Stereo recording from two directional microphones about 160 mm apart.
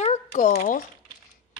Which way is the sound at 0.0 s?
50° left (ahead or behind).